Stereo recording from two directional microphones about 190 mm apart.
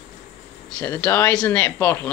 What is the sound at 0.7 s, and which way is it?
Speech, 5° left (ahead or behind).